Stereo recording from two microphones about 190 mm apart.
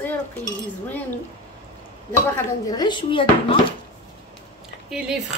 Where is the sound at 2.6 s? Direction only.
20° left (ahead or behind).